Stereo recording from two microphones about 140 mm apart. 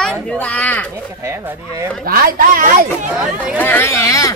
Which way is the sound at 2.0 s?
90° right.